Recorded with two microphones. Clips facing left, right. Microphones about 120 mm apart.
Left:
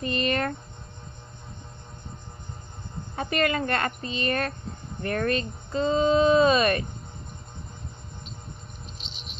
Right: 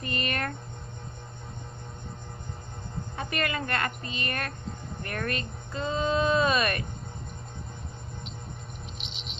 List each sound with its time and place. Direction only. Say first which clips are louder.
0.0 s speech: left 6 dB; 25° left (ahead or behind)
3.2 s a woman's voice: left 6 dB; 30° left (ahead or behind)